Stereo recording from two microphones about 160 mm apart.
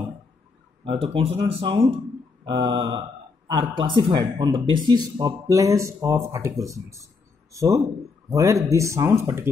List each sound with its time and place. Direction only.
0.8 s speech: 35° right (ahead or behind); by 9.5 s 15° right (ahead or behind)